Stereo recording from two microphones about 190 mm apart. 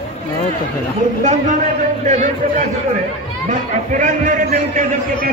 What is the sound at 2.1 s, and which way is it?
A man's voice, 40° right (ahead or behind).